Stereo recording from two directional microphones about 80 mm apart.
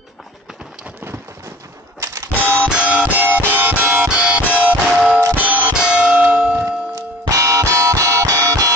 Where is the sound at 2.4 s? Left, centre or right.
Left.